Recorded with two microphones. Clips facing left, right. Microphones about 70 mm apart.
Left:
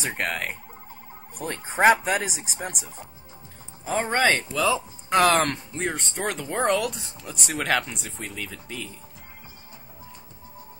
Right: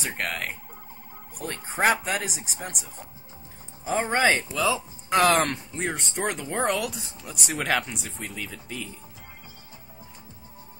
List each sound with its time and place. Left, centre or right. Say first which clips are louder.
0.0 s speech: left 2 dB; centre